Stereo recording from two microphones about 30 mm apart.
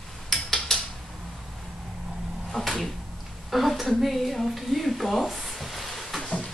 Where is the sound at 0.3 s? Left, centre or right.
Centre.